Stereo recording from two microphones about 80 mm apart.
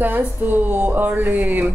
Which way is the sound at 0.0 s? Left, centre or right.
Right.